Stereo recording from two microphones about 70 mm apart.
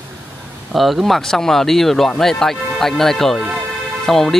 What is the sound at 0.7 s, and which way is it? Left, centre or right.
Speech, centre.